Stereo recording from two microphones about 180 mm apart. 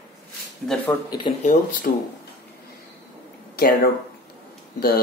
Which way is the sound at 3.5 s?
55° left (ahead or behind).